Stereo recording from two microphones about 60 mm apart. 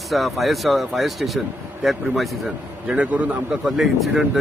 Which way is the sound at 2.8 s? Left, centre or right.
Right.